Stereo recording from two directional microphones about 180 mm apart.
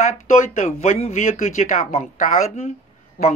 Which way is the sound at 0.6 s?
40° left (ahead or behind).